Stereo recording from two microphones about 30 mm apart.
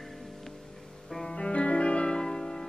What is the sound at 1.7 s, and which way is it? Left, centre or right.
Music, left.